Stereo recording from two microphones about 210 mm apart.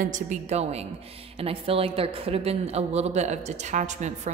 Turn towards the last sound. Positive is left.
turn(degrees=-35)  # may be behind; listen again after turning